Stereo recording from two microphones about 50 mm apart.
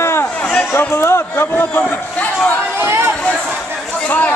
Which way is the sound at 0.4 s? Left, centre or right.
Left.